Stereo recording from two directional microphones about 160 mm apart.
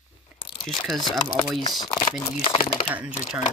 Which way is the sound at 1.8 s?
20° left (ahead or behind).